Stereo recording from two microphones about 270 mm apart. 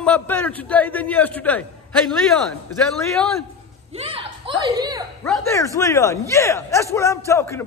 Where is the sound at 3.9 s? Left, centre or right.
Right.